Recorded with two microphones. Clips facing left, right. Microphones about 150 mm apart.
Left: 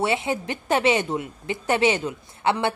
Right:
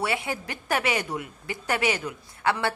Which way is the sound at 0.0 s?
25° left (ahead or behind).